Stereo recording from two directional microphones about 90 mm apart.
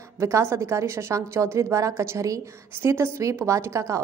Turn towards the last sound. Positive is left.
turn(degrees=-35)  # may be behind; listen again after turning